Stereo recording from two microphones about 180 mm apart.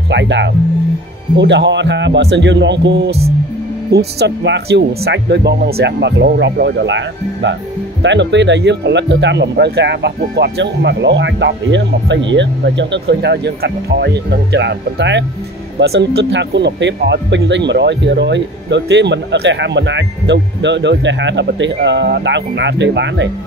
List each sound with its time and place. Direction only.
0.1 s speech: 80° right
4.2 s speech: 70° right (ahead or behind)
15.8 s speech: 65° right (ahead or behind); by 23.2 s 80° right